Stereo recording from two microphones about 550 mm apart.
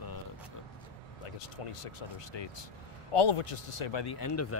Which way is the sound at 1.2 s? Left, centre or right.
Left.